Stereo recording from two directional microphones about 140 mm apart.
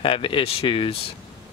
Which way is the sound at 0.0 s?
40° left (ahead or behind).